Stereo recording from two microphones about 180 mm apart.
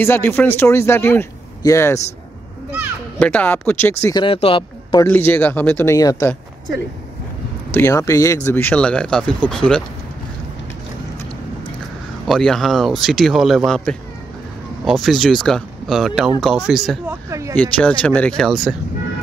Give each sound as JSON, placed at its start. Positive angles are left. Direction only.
{"t": 0.0, "sound": "a man's voice", "side_deg": 10}
{"t": 3.2, "sound": "a man's voice", "side_deg": 10}
{"t": 4.0, "sound": "speech", "side_deg": 25}
{"t": 5.0, "sound": "a man's voice", "side_deg": 10}
{"t": 7.7, "sound": "a man's voice", "side_deg": 15}
{"t": 12.3, "sound": "speech", "side_deg": 5}
{"t": 17.1, "sound": "speech", "side_deg": -15}
{"t": 17.6, "sound": "speech", "side_deg": 5}